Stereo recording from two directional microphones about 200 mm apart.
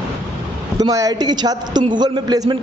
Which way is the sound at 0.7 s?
20° right (ahead or behind).